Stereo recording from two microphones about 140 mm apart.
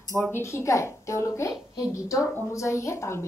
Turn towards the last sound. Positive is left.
turn(degrees=20)  # may be behind; listen again after turning